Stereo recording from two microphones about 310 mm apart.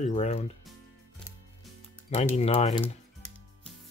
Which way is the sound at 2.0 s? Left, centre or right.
Left.